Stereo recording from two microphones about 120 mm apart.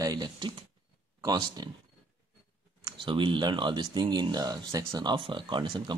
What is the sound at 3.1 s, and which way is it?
Speech, 45° right (ahead or behind).